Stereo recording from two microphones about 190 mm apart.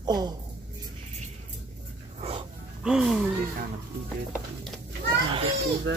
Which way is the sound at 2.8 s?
Centre (ahead or behind).